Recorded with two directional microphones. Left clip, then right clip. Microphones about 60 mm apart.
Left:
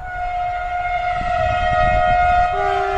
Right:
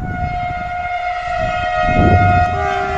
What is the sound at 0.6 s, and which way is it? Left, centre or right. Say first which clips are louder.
Civil defense siren: even; right.